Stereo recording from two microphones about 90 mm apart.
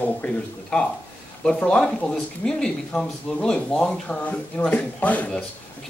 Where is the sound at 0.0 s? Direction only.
15° left (ahead or behind).